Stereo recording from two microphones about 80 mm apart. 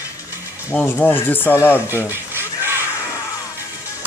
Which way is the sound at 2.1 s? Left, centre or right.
Right.